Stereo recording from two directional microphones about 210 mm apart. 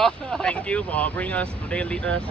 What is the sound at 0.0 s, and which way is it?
Speech, 5° left (ahead or behind).